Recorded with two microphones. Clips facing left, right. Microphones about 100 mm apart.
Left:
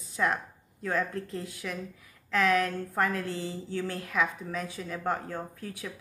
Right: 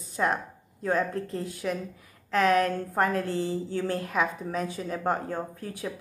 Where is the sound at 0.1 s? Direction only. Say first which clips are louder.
Right 2 dB; 30° right (ahead or behind).